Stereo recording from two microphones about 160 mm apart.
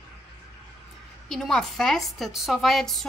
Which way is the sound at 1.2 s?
5° left (ahead or behind).